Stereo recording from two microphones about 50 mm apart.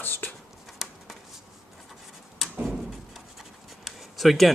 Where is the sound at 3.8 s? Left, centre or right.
Centre.